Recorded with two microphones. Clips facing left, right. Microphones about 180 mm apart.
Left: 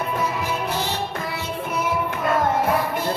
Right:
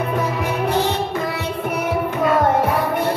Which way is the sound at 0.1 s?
65° right (ahead or behind).